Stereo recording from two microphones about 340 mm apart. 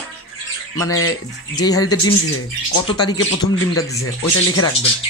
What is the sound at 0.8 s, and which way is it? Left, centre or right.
Speech, left.